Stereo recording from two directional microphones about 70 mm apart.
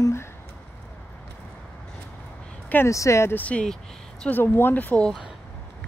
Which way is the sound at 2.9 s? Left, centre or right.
Left.